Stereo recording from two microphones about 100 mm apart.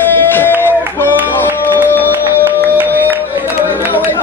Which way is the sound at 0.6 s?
20° left (ahead or behind).